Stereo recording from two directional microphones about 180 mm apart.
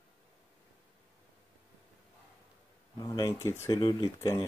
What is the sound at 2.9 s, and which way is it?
Speech, 20° left (ahead or behind).